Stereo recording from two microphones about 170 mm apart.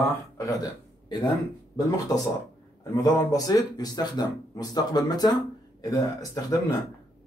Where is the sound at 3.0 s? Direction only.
20° left (ahead or behind).